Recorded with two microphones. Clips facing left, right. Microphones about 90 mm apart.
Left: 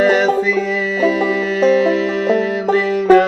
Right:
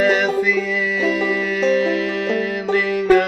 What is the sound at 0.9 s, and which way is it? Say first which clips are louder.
Music: left 5 dB; 40° left (ahead or behind).